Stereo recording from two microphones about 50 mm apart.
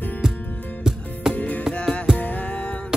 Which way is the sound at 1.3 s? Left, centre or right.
Left.